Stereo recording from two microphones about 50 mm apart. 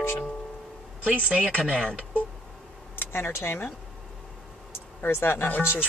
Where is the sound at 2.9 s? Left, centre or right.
Left.